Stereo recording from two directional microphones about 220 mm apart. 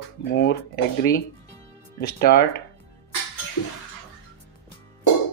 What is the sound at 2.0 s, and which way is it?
Speech, 45° left (ahead or behind).